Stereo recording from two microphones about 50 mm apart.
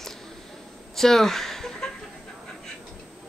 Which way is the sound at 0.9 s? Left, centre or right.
Centre.